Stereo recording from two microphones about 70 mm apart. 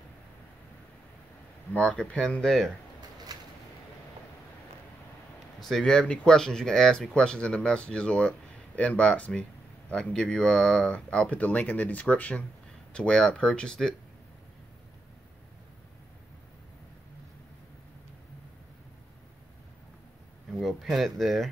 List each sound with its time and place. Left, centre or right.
1.7 s speech: centre
3.3 s a sound: right
5.6 s speech: centre
20.6 s speech: centre